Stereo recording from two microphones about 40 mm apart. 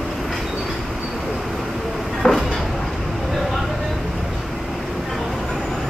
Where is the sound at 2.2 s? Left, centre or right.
Left.